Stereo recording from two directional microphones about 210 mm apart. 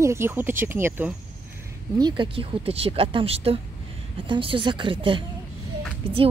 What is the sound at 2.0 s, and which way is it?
Speech, 20° right (ahead or behind).